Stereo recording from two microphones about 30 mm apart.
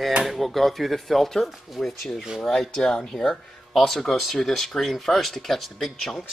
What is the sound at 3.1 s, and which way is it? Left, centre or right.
Speech, centre.